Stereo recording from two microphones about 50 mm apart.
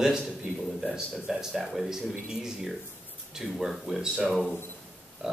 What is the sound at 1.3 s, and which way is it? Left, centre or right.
A man's voice, centre.